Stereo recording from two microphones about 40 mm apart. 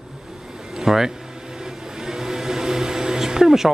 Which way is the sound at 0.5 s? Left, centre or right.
Centre.